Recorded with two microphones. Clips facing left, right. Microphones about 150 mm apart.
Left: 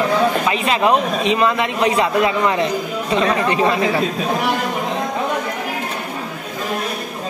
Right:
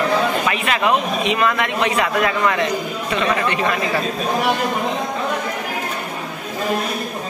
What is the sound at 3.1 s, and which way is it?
Speech, 35° left (ahead or behind).